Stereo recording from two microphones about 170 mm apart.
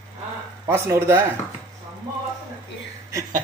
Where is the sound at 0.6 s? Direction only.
15° right (ahead or behind).